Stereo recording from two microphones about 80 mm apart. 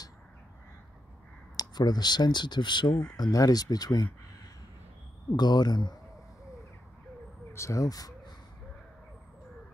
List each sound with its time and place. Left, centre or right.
1.6 s speech: left
3.2 s speech: left
5.3 s speech: left
7.5 s speech: left